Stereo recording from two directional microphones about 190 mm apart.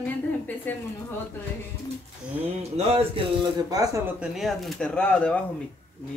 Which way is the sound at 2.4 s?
30° right (ahead or behind).